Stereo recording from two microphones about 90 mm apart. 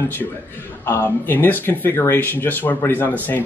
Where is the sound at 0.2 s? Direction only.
20° left (ahead or behind).